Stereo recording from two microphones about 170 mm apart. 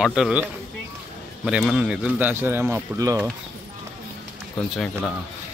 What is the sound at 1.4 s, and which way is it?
A man's voice, 5° right (ahead or behind).